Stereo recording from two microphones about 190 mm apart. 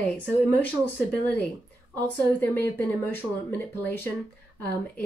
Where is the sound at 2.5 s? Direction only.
10° left (ahead or behind).